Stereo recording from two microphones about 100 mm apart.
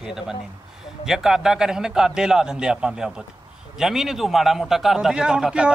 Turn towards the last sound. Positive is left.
turn(degrees=-10)  # may be behind; listen again after turning